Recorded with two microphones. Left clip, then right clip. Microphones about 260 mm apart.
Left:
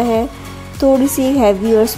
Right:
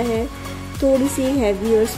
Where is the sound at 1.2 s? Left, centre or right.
Centre.